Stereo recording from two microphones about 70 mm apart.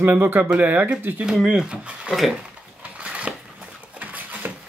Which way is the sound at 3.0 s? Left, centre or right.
Centre.